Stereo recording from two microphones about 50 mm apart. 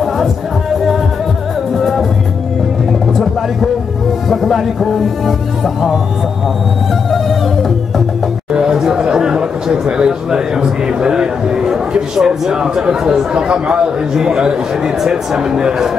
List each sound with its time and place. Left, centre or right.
4.3 s music: centre
8.5 s chatter: centre
13.0 s speech: centre